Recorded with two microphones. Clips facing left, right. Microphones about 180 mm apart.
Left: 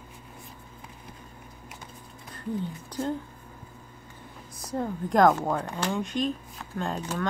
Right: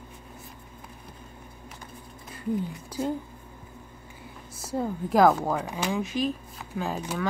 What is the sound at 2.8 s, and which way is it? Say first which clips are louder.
Speech: even; 10° right (ahead or behind).